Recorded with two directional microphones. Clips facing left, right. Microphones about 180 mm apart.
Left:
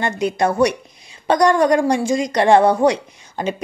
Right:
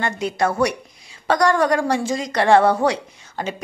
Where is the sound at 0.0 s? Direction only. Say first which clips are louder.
Left 3 dB; 20° left (ahead or behind).